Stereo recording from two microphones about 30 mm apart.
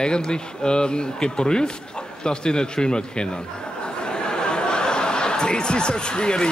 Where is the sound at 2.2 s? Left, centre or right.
Left.